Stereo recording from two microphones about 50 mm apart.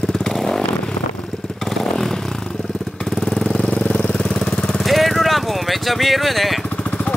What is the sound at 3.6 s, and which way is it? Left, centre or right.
Jackhammer, left.